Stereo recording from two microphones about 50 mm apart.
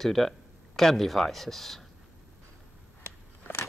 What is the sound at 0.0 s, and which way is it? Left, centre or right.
Speech, centre.